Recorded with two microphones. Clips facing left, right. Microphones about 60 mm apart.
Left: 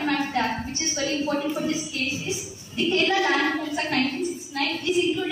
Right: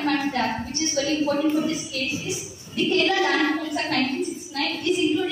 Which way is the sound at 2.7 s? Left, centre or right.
Centre.